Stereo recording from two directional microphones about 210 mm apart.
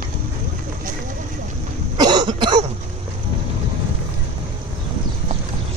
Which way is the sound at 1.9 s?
20° right (ahead or behind).